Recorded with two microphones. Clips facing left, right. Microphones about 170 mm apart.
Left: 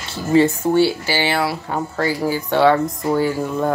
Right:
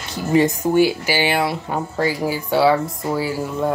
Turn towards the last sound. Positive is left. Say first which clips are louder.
# left 3 dB
turn(degrees=-5)  # may be behind; listen again after turning